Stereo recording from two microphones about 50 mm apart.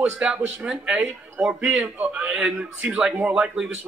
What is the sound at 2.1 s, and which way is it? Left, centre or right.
Speech, right.